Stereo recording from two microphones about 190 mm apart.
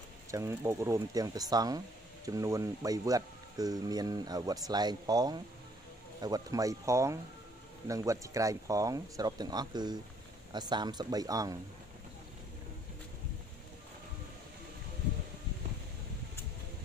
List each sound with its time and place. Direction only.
0.3 s speech: 15° right (ahead or behind)